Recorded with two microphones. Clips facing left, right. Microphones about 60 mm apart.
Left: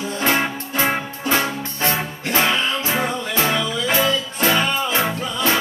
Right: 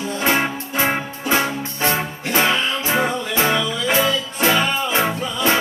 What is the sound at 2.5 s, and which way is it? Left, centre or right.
Music, centre.